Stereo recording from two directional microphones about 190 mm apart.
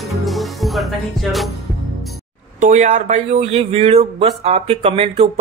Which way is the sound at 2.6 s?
40° right (ahead or behind).